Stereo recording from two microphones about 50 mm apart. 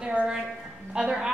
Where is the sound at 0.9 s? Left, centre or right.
Centre.